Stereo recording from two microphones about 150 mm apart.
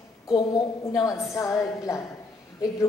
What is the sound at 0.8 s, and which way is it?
A woman's voice, 20° left (ahead or behind).